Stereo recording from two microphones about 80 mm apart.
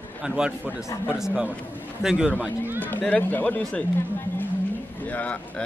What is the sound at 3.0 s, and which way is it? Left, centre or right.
Speech, centre.